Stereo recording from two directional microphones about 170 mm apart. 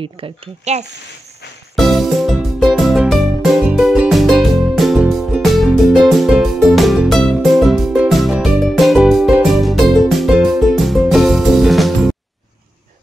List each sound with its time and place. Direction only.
0.0 s speech: 35° right (ahead or behind)
1.8 s music: centre (ahead or behind)